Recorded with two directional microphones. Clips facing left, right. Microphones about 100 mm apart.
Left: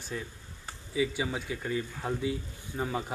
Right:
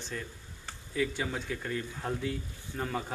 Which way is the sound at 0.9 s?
5° left (ahead or behind).